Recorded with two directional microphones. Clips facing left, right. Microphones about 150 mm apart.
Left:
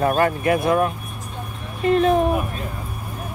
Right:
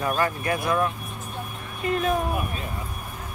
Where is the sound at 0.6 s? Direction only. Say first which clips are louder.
Left 5 dB; 30° left (ahead or behind).